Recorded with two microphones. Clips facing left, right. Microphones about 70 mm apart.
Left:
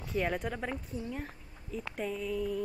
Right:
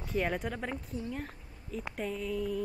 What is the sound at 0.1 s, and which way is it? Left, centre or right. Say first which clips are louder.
A woman's voice: even; centre.